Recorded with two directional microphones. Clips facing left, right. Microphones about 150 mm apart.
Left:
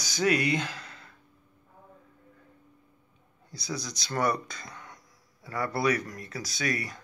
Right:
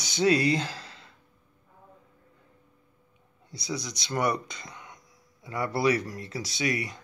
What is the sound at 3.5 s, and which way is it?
Speech, 20° right (ahead or behind).